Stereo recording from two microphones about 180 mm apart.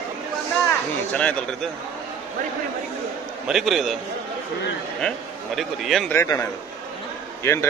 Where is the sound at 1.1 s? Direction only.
5° left (ahead or behind).